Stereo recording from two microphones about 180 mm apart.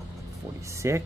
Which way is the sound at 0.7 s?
15° right (ahead or behind).